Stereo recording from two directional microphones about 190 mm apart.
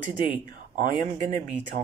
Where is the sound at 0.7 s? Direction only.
40° right (ahead or behind).